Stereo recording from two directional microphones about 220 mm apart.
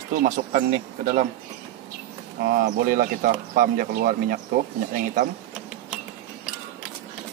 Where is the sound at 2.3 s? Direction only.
45° right (ahead or behind).